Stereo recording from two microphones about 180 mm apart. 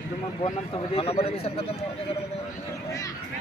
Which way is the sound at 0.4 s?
30° left (ahead or behind).